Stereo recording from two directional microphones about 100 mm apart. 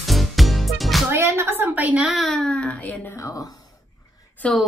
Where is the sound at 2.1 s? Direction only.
5° left (ahead or behind).